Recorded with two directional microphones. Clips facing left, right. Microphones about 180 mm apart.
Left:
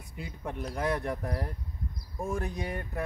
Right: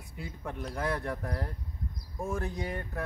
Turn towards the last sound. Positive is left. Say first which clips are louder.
# left 1 dB
turn(degrees=10)  # may be behind; listen again after turning